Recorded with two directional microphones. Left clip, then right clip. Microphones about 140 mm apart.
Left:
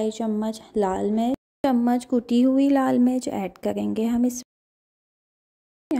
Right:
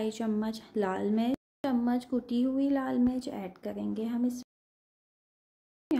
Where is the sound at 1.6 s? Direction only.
60° left (ahead or behind).